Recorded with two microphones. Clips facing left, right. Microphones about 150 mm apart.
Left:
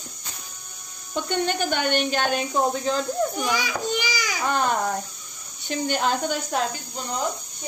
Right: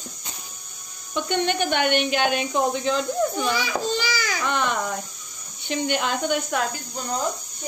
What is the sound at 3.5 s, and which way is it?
Speech, 15° left (ahead or behind).